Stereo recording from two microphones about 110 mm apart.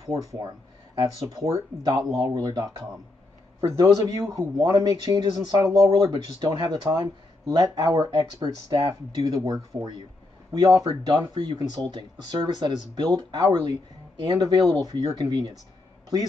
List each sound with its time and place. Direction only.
0.0 s speech: 30° right (ahead or behind)
3.7 s speech: 30° right (ahead or behind)
10.8 s speech: 40° right (ahead or behind)